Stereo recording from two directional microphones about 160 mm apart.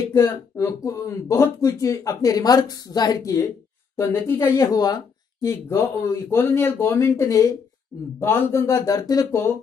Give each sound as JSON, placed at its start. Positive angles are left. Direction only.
{"t": 0.0, "sound": "speech", "side_deg": 20}